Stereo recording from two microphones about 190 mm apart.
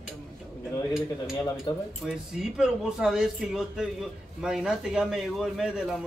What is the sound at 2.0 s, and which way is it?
Speech, 5° right (ahead or behind).